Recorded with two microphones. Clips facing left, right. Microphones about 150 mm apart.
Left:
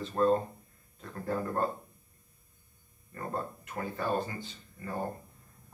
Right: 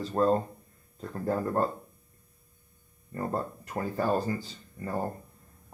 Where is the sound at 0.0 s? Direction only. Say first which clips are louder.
Right 2 dB; 35° right (ahead or behind).